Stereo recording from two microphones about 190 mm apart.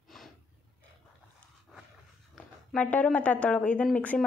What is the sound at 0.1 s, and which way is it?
Snort, centre (ahead or behind).